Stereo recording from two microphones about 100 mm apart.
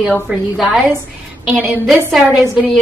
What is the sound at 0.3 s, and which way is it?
A woman's voice, 10° right (ahead or behind).